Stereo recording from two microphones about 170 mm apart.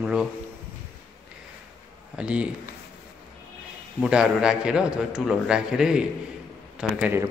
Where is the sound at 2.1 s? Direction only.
5° right (ahead or behind).